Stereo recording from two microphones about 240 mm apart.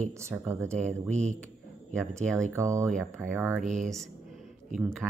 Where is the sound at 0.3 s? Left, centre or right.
Centre.